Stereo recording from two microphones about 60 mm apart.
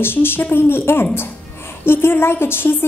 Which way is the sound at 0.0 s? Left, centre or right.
Left.